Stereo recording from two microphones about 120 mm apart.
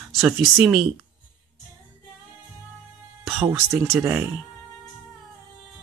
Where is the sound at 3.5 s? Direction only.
20° right (ahead or behind).